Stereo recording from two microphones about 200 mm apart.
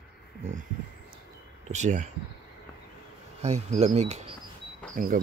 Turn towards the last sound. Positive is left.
turn(degrees=-40)  # may be behind; listen again after turning